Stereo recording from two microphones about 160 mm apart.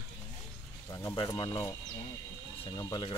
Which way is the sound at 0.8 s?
20° left (ahead or behind).